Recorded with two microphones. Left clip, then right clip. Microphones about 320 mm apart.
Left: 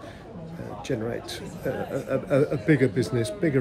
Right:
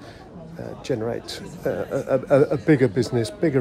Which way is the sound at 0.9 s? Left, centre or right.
Centre.